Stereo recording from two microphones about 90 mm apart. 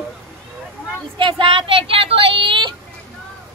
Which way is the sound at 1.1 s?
70° right (ahead or behind).